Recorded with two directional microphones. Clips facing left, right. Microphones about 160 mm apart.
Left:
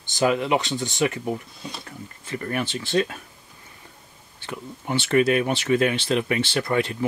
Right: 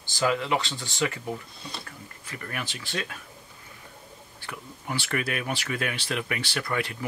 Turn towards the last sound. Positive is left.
turn(degrees=25)  # may be behind; listen again after turning